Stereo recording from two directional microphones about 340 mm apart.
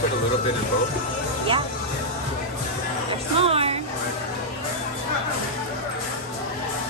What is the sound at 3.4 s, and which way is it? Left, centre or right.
Music, centre.